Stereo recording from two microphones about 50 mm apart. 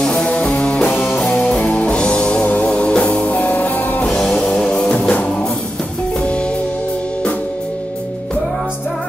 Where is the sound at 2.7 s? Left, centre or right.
Left.